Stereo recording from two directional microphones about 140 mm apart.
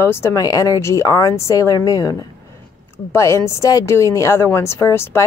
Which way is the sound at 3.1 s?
20° left (ahead or behind).